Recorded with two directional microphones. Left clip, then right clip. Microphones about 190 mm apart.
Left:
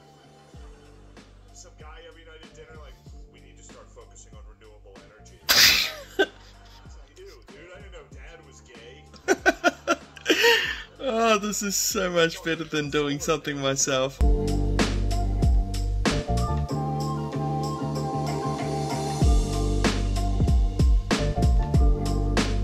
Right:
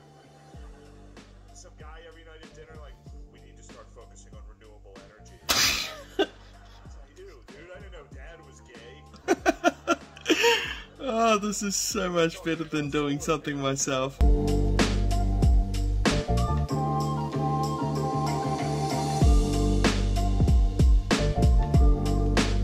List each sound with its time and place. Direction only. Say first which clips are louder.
5.5 s sneeze: left 7 dB; 20° right (ahead or behind)
9.2 s a sound: left 2 dB; 15° right (ahead or behind)
14.1 s music: even; centre (ahead or behind)